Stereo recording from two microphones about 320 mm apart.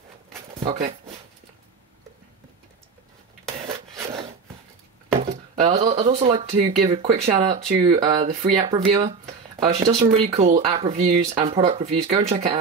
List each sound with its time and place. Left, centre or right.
0.6 s speech: centre
5.1 s speech: centre